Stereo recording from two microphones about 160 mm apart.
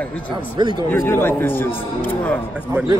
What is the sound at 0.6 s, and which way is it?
Speech, 25° right (ahead or behind).